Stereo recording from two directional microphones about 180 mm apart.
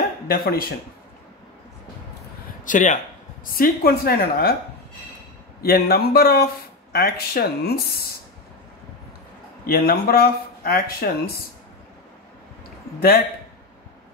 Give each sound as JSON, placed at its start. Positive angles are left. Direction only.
{"t": 0.3, "sound": "speech", "side_deg": 55}
{"t": 2.6, "sound": "a man's voice", "side_deg": 45}
{"t": 3.5, "sound": "speech", "side_deg": 55}
{"t": 5.6, "sound": "speech", "side_deg": 60}
{"t": 9.7, "sound": "speech", "side_deg": 55}